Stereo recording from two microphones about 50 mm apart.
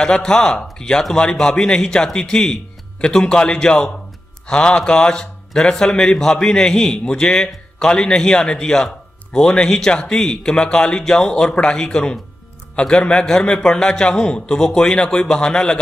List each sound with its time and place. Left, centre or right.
0.0 s a man's voice: centre